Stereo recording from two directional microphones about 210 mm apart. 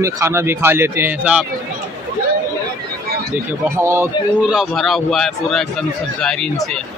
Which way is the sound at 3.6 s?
10° right (ahead or behind).